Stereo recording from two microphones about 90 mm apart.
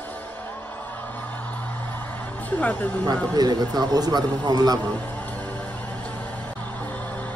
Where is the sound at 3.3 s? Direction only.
50° right (ahead or behind).